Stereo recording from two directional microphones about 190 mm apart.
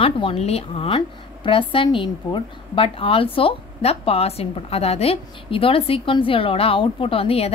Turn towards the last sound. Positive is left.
turn(degrees=30)  # may be behind; listen again after turning